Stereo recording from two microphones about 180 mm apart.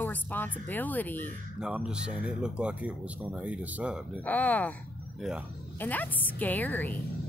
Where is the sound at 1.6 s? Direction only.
5° right (ahead or behind).